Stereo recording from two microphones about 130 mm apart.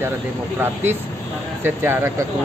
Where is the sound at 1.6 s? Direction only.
15° right (ahead or behind).